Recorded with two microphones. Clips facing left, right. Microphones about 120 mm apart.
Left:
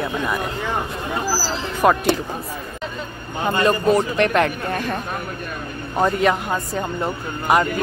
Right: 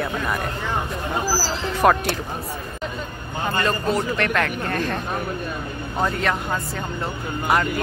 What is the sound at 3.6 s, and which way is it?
Speech, 20° left (ahead or behind).